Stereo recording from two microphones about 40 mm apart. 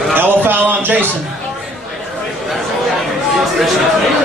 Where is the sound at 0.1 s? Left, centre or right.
Right.